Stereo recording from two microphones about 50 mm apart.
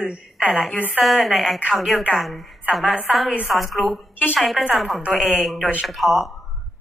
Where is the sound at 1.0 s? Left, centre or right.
Centre.